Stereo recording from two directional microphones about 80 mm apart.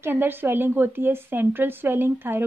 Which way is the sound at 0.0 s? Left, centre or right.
Right.